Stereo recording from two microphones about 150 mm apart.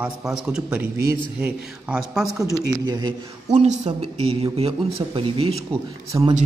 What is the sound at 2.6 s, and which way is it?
Speech, 25° right (ahead or behind).